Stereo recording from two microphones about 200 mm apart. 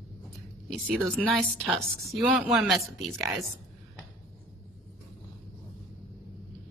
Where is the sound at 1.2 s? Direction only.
Centre (ahead or behind).